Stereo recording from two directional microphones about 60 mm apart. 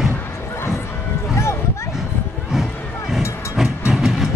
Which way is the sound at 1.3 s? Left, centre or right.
Left.